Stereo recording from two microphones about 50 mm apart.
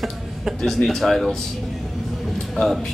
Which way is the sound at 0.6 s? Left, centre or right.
Centre.